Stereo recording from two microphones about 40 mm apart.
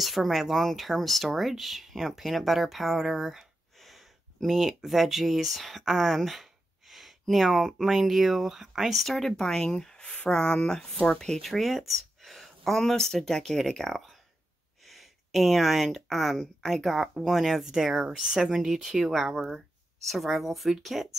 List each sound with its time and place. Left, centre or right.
0.0 s speech: centre
3.7 s a sound: centre
7.2 s speech: centre
9.1 s speech: centre
11.4 s speech: centre